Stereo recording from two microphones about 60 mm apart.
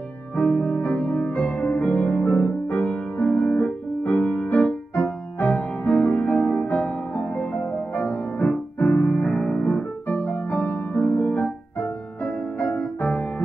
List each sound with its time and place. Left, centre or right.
0.4 s music: left
5.4 s music: left
5.9 s music: left
9.4 s music: centre
10.1 s music: left